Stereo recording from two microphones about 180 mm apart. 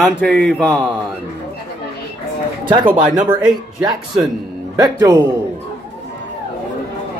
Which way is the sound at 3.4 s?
5° right (ahead or behind).